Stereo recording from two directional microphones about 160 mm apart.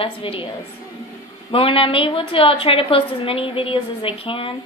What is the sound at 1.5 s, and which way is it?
A woman's voice, 35° left (ahead or behind).